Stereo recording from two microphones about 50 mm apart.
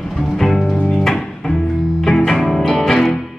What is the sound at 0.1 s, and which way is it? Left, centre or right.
Music, centre.